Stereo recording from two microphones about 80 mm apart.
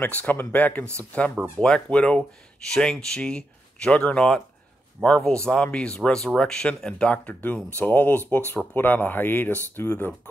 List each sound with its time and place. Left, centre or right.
0.0 s speech: left